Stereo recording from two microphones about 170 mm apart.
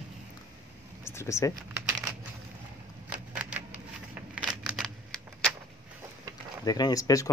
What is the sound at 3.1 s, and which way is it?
Typewriter, 10° right (ahead or behind).